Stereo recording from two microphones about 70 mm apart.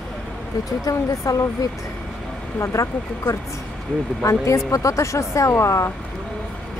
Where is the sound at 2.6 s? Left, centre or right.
Left.